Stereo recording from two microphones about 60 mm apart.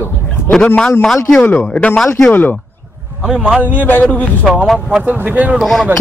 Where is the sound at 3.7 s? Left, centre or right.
Left.